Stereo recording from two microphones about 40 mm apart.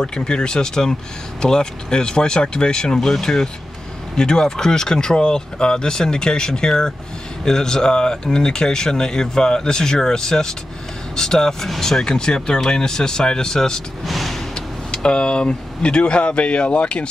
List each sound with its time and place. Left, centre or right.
0.0 s speech: centre
14.0 s vehicle: centre
14.5 s speech: left